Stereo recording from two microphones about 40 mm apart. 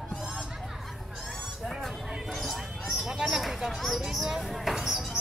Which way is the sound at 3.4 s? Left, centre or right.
Centre.